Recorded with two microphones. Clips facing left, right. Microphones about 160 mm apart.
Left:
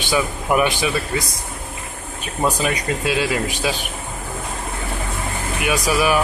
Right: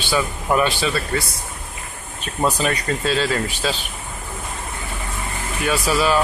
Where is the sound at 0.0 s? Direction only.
15° left (ahead or behind).